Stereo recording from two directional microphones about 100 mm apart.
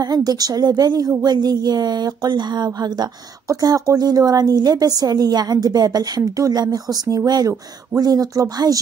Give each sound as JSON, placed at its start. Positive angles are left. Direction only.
{"t": 0.0, "sound": "a woman's voice", "side_deg": -40}